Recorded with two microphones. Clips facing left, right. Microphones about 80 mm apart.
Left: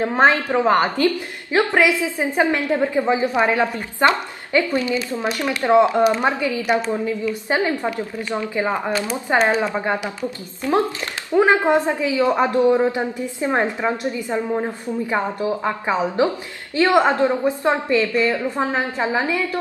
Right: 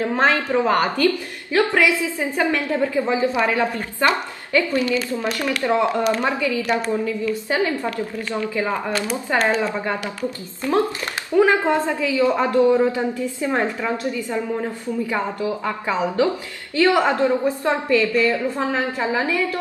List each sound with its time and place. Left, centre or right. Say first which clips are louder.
0.0 s a woman's voice: left 3 dB; left
11.3 s a woman's voice: left 1 dB; left